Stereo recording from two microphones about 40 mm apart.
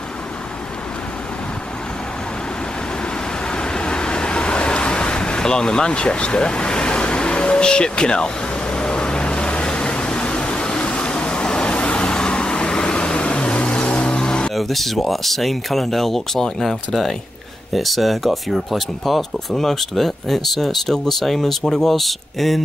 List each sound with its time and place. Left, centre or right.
3.5 s vehicle: left
14.5 s speech: centre